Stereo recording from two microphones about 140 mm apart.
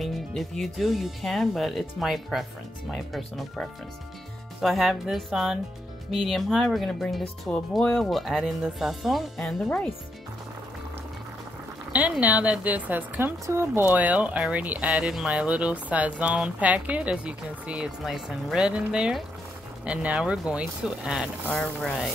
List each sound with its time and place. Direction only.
0.0 s speech: centre (ahead or behind)
11.9 s speech: 10° right (ahead or behind)